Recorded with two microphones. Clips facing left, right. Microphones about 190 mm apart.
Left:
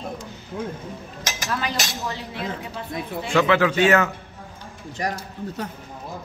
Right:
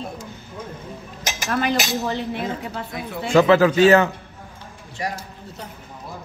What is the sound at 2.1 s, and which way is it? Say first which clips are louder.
Speech: right 5 dB; 55° right (ahead or behind).